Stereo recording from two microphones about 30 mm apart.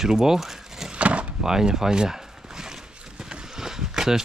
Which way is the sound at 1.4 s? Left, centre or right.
Centre.